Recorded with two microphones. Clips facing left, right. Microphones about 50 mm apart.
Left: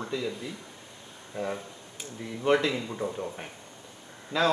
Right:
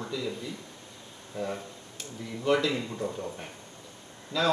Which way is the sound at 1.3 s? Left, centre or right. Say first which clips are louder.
Left 1 dB; centre.